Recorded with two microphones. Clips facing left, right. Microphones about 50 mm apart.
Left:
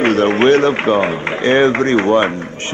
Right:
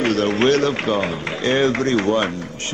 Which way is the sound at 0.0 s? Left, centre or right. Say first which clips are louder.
Left 5 dB; left.